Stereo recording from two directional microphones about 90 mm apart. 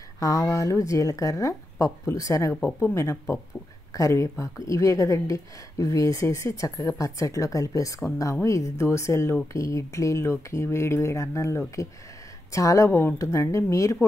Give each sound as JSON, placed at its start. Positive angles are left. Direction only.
{"t": 0.2, "sound": "speech", "side_deg": 35}